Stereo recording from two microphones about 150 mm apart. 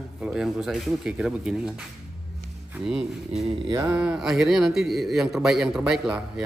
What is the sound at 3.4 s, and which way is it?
Mantra, 35° right (ahead or behind).